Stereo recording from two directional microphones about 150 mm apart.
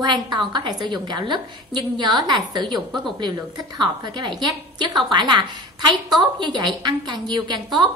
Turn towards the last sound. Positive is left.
turn(degrees=-30)  # may be behind; listen again after turning